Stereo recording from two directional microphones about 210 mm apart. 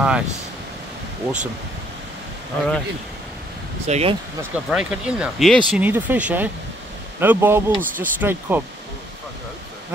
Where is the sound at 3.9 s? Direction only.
30° right (ahead or behind).